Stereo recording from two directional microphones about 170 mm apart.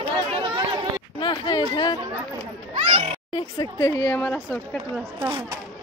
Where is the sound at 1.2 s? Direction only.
25° left (ahead or behind).